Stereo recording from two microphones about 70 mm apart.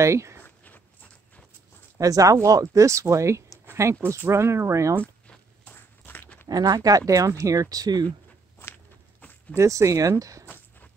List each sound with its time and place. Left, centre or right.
0.0 s speech: right
2.0 s speech: right
5.7 s a sound: left
6.5 s speech: right
7.7 s speech: right
9.2 s a sound: left
9.6 s speech: right